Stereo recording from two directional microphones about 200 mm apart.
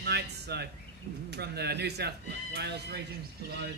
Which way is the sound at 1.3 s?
55° right (ahead or behind).